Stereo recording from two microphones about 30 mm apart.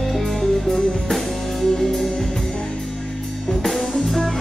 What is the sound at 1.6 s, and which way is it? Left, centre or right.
Music, centre.